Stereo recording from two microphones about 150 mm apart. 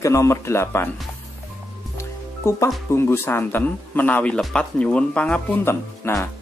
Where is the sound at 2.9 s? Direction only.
15° left (ahead or behind).